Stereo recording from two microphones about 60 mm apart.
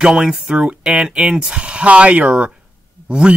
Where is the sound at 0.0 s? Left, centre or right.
Centre.